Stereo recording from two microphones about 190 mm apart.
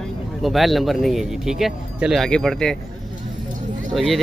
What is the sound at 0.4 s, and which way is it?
Speech, centre (ahead or behind).